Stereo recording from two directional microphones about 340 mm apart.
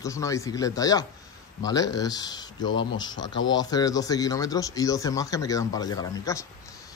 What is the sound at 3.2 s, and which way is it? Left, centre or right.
Speech, left.